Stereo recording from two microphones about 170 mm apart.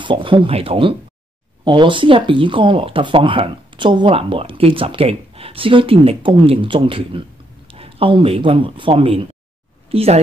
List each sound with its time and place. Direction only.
0.0 s speech: 30° right (ahead or behind)